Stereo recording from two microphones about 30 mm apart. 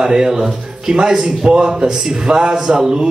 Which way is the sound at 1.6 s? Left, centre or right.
Right.